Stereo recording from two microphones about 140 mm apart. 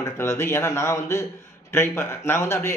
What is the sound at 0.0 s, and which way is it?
A man's voice, 20° left (ahead or behind).